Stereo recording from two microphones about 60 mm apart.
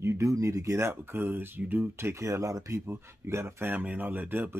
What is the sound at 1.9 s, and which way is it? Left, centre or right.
Speech, right.